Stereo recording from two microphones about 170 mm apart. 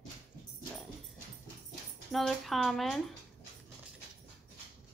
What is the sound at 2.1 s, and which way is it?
Speech, centre (ahead or behind).